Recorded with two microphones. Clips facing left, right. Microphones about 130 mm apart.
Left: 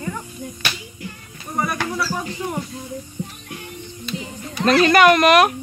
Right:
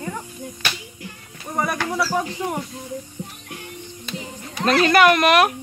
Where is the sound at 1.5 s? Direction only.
90° right.